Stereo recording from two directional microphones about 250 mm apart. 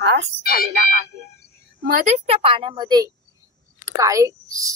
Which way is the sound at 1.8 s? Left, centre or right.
Right.